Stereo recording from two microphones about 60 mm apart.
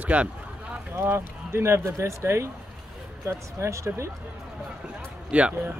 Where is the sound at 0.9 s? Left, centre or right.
Right.